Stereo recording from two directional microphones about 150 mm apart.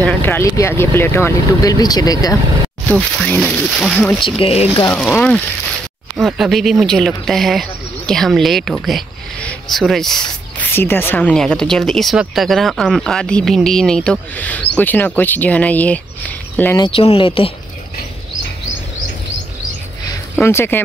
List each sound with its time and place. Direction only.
0.0 s speech: 15° left (ahead or behind)
2.9 s speech: 5° left (ahead or behind)
4.2 s speech: 40° left (ahead or behind)
4.9 s speech: 5° left (ahead or behind)
10.7 s speech: 15° left (ahead or behind)
16.7 s speech: 35° left (ahead or behind)
20.3 s speech: 15° left (ahead or behind)